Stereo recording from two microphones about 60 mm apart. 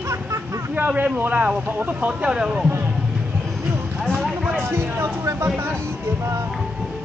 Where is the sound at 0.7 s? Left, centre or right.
Right.